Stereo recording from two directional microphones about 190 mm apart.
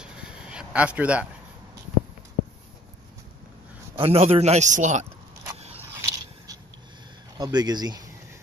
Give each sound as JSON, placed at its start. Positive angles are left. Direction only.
{"t": 0.0, "sound": "a sound", "side_deg": -5}
{"t": 3.9, "sound": "a man's voice", "side_deg": -30}
{"t": 5.9, "sound": "biting", "side_deg": -15}
{"t": 7.3, "sound": "speech", "side_deg": -20}